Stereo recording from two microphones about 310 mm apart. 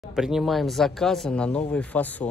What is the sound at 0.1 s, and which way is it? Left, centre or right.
Speech, centre.